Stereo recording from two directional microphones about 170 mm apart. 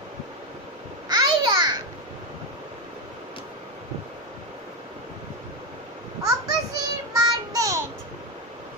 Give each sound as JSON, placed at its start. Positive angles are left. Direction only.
{"t": 1.0, "sound": "babbling", "side_deg": -25}
{"t": 6.2, "sound": "child singing", "side_deg": -20}